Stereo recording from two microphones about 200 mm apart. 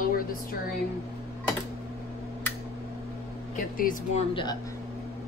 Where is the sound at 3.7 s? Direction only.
45° left (ahead or behind).